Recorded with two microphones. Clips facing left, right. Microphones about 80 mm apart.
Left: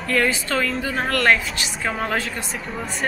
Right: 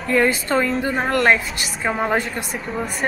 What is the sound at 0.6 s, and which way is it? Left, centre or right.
A woman's voice, right.